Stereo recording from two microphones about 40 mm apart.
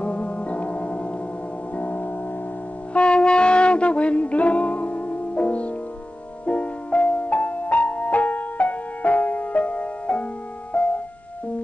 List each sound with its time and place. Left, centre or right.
0.0 s keyboard: left
1.8 s music: left
2.9 s music: left